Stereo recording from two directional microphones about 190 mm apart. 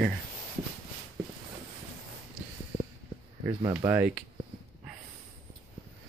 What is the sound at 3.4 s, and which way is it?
Speech, 20° right (ahead or behind).